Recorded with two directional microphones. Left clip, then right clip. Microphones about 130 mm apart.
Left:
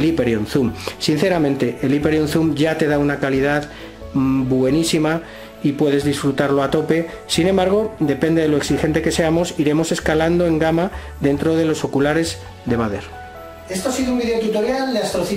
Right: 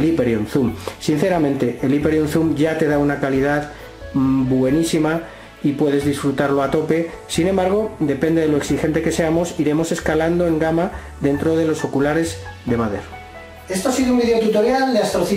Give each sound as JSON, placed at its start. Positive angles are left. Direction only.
{"t": 0.0, "sound": "speech", "side_deg": 15}
{"t": 4.7, "sound": "speech", "side_deg": 15}
{"t": 13.7, "sound": "speech", "side_deg": 0}